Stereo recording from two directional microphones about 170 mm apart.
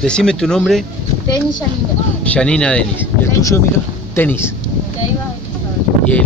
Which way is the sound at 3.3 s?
15° left (ahead or behind).